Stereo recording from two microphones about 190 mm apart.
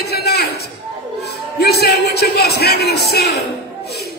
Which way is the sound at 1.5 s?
60° left (ahead or behind).